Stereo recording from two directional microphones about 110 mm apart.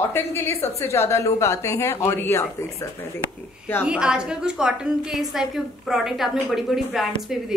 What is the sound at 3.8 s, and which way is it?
A woman's voice, 10° right (ahead or behind).